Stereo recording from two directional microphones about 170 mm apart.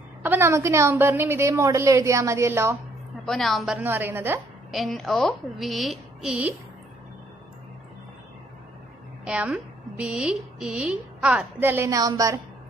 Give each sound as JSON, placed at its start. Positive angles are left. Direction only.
{"t": 0.2, "sound": "a woman's voice", "side_deg": -15}
{"t": 3.3, "sound": "a woman's voice", "side_deg": 0}
{"t": 3.8, "sound": "a woman's voice", "side_deg": -10}
{"t": 4.6, "sound": "a woman's voice", "side_deg": 0}
{"t": 9.2, "sound": "a woman's voice", "side_deg": -5}